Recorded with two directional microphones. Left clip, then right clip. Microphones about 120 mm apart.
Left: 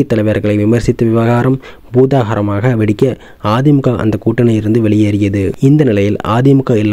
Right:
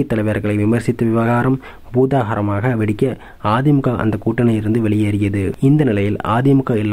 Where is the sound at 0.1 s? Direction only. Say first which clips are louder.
Left 6 dB; 45° left (ahead or behind).